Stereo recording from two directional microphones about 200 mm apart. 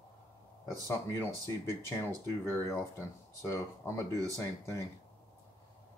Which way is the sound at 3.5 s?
15° left (ahead or behind).